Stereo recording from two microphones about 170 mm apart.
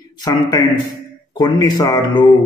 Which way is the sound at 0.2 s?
20° left (ahead or behind).